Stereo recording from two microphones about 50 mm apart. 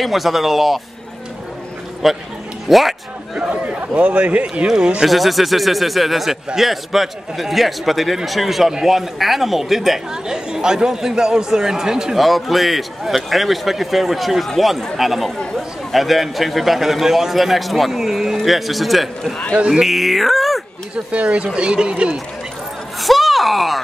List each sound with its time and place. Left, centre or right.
0.0 s speech: centre
2.0 s speech: centre
3.3 s speech: right
5.0 s speech: centre
12.2 s speech: centre
20.9 s speech: right
22.9 s speech: centre